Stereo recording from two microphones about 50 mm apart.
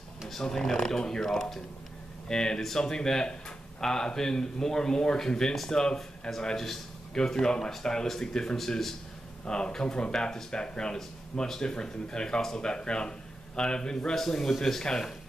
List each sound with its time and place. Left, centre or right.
0.3 s speech: centre